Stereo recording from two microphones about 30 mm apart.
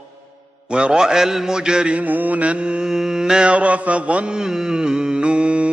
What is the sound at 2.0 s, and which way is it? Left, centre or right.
Mantra, right.